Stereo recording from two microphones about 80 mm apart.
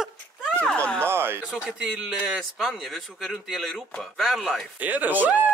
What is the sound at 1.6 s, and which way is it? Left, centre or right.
Speech, centre.